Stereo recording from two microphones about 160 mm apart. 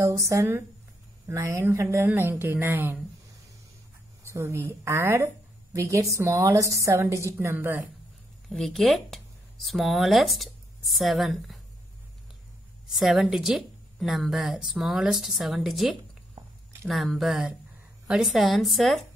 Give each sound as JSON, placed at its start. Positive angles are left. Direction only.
{"t": 0.0, "sound": "a woman's voice", "side_deg": -20}
{"t": 4.2, "sound": "a woman's voice", "side_deg": -20}
{"t": 8.5, "sound": "speech", "side_deg": 0}
{"t": 12.8, "sound": "a woman's voice", "side_deg": -5}